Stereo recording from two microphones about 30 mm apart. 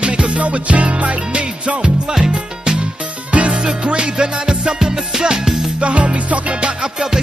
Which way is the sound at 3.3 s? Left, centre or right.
Right.